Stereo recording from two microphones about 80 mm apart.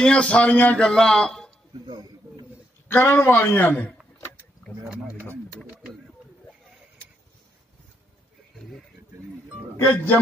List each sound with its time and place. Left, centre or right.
0.0 s a man's voice: centre
0.8 s a man's voice: centre
1.9 s a sound: right
2.9 s a man's voice: left
9.8 s a man's voice: left